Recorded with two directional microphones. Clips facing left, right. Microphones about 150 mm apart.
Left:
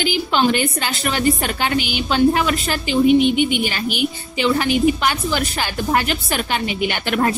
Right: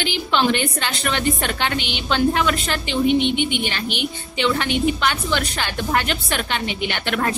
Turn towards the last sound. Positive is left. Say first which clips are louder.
# left 3 dB
turn(degrees=10)  # may be behind; listen again after turning